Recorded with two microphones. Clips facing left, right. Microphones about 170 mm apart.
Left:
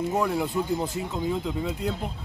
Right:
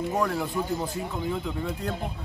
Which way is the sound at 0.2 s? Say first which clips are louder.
Left 1 dB; 15° left (ahead or behind).